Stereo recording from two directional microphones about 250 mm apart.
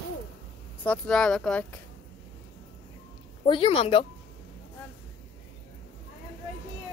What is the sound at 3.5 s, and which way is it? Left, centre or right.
Speech, left.